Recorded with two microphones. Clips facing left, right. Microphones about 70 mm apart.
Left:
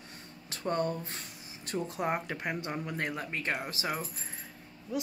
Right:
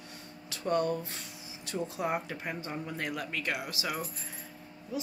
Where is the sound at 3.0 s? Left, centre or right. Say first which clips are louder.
Even; left.